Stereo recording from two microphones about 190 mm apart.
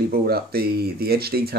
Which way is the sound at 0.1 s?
55° right (ahead or behind).